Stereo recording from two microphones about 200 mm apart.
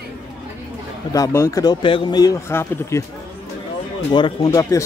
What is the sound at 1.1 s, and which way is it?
Speech, 15° left (ahead or behind).